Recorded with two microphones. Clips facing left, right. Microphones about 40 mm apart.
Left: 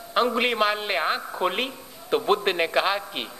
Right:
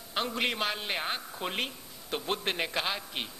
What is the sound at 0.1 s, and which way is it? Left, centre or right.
A man's voice, left.